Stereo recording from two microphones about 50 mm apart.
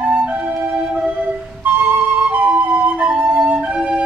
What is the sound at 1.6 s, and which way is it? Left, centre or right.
Flute, right.